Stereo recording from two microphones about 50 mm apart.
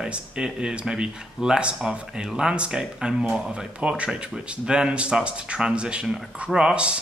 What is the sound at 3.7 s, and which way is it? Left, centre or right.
Speech, right.